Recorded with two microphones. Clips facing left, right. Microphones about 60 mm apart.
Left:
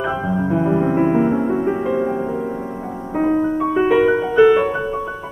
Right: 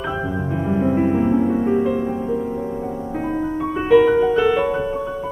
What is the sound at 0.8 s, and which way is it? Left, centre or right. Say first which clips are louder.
Music: left 2 dB; left.